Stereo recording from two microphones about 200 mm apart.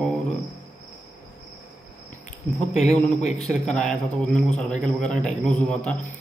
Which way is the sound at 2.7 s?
35° left (ahead or behind).